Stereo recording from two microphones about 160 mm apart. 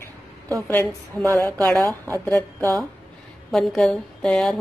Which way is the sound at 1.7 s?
Centre (ahead or behind).